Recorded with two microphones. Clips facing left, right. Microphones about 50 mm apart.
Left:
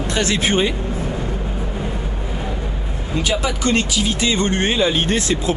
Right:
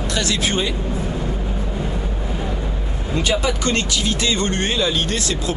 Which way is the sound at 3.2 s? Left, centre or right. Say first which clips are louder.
Even; centre.